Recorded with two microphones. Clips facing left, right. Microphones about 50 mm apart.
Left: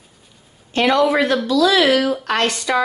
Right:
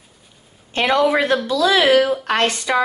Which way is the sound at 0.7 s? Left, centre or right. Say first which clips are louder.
Left 1 dB; right.